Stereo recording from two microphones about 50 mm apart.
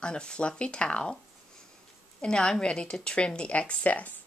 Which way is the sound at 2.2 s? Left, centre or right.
Centre.